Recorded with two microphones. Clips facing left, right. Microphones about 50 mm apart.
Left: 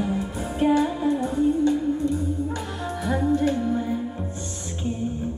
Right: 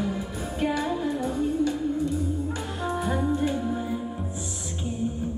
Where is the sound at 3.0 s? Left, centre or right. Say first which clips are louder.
Left 5 dB; centre.